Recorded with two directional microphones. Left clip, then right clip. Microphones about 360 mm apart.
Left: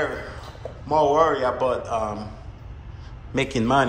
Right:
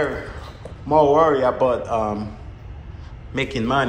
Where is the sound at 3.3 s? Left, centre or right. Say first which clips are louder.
Even; centre.